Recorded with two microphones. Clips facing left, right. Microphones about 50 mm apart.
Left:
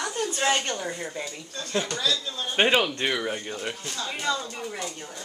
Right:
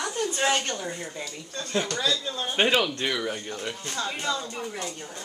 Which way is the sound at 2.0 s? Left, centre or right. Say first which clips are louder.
Right 1 dB; right.